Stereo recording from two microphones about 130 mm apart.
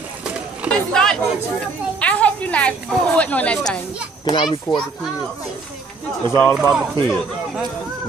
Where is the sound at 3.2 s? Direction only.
10° left (ahead or behind).